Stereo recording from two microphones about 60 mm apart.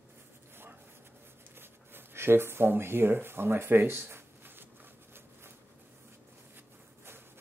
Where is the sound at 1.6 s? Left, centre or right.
Right.